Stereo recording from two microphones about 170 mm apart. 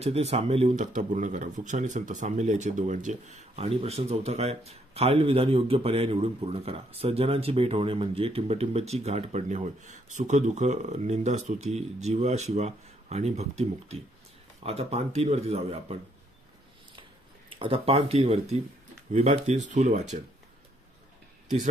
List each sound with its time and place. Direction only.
0.0 s speech: 40° right (ahead or behind)
17.5 s speech: 30° right (ahead or behind)